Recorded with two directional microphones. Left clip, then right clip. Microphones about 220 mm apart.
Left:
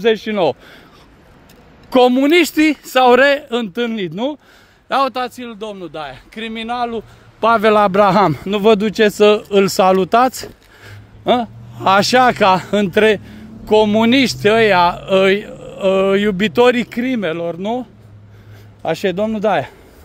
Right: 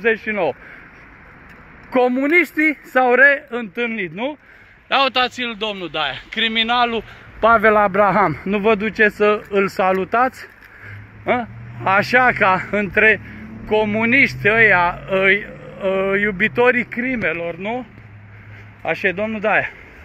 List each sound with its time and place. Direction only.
0.0 s speech: 80° left
1.9 s speech: 70° left (ahead or behind)
4.8 s a man's voice: 45° left (ahead or behind)
5.1 s speech: 20° left (ahead or behind); by 6.9 s 5° left (ahead or behind)
7.3 s a man's voice: 50° left (ahead or behind)
11.8 s a man's voice: 65° left (ahead or behind); by 17.7 s 80° left
18.8 s speech: 70° left (ahead or behind)